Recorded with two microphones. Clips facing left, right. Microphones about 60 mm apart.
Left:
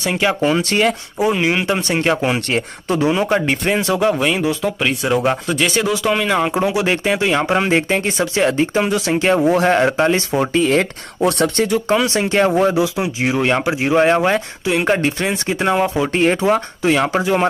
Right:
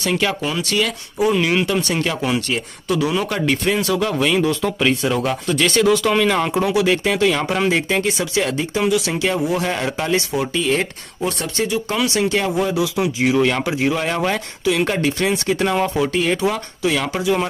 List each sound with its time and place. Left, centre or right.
0.0 s speech: left
0.4 s speech: left
1.1 s speech: left
1.7 s speech: left
4.1 s speech: centre
5.0 s speech: left
5.5 s speech: centre
6.5 s speech: left
11.2 s speech: left
11.9 s speech: left
16.1 s speech: left